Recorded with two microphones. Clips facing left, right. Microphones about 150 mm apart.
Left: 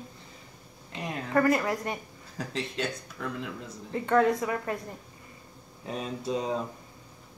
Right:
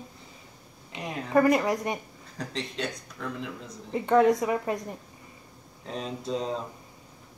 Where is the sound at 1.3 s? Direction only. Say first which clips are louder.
Right 3 dB; 20° right (ahead or behind).